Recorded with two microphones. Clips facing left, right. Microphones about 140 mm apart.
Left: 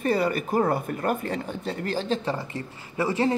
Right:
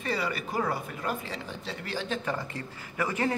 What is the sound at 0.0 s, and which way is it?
Speech, 50° left (ahead or behind).